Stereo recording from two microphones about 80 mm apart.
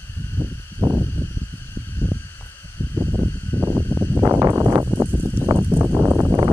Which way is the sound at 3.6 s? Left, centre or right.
Right.